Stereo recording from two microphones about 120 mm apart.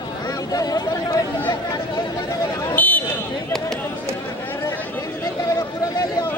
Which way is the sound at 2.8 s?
15° left (ahead or behind).